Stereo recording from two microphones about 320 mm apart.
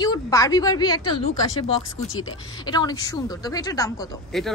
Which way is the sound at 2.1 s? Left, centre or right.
Left.